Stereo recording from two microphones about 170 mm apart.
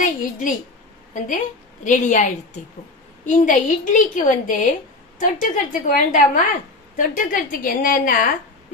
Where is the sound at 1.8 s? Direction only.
45° left (ahead or behind).